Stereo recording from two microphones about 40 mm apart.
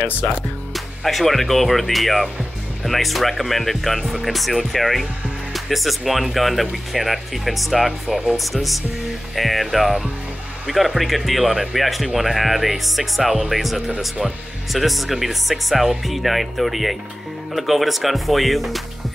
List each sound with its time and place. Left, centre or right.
0.2 s speech: left
0.7 s speech: centre